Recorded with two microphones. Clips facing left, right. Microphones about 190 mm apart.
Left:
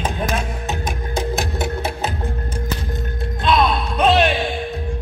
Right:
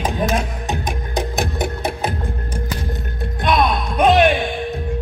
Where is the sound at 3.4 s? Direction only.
15° right (ahead or behind).